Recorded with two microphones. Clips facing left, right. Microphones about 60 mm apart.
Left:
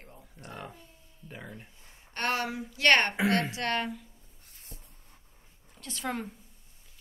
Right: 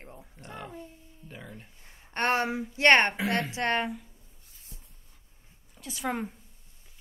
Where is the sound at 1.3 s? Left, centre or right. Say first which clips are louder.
Left 1 dB; centre.